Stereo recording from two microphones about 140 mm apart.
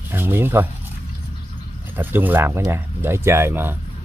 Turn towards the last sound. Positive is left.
turn(degrees=-15)  # may be behind; listen again after turning